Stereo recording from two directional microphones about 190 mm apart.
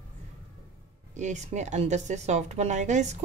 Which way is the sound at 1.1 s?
40° right (ahead or behind).